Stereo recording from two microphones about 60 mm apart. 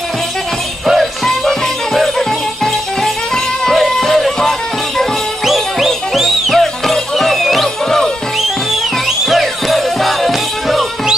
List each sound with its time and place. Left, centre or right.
0.9 s music: centre